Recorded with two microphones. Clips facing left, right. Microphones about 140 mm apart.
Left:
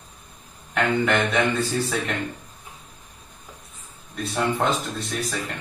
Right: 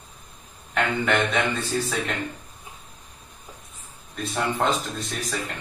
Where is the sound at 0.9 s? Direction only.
Centre (ahead or behind).